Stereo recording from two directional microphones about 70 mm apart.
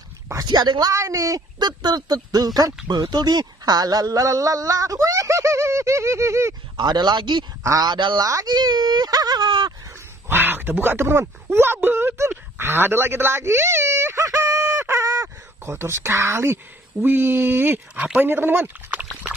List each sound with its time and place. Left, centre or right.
0.5 s speech: right
0.9 s speech: right
1.6 s speech: right
2.9 s speech: right
6.8 s speech: right
8.5 s whimper: right
10.2 s speech: right
15.6 s speech: right
17.0 s speech: right